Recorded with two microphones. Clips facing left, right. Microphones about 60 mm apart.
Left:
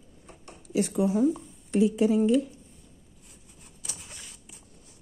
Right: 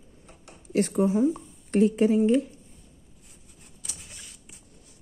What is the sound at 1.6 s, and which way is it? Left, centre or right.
Speech, right.